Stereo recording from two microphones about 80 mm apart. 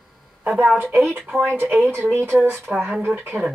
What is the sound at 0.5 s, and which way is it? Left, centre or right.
Speech, centre.